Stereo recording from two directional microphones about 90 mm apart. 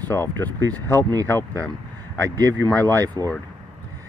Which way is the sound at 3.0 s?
45° right (ahead or behind).